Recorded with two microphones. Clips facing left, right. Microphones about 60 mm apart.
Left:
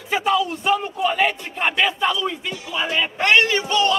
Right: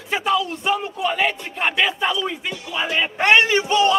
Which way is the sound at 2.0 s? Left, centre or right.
Centre.